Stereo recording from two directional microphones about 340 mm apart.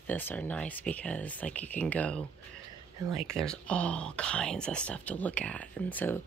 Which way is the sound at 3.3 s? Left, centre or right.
Centre.